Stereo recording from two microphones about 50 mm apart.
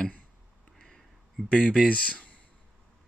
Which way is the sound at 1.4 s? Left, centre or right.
Left.